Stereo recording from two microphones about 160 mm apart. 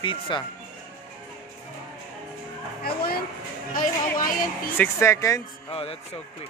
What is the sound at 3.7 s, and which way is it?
Speech, 60° left (ahead or behind).